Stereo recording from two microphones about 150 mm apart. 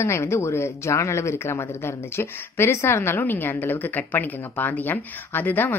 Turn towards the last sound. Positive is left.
turn(degrees=10)  # may be behind; listen again after turning